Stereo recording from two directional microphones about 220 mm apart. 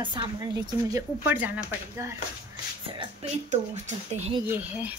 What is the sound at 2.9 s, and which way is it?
Speech, 20° right (ahead or behind).